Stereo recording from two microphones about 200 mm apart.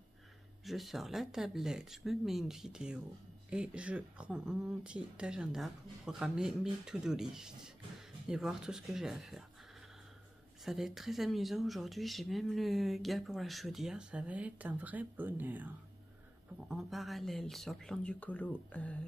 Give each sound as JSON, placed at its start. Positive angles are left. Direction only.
{"t": 0.7, "sound": "speech", "side_deg": 0}
{"t": 10.6, "sound": "speech", "side_deg": 0}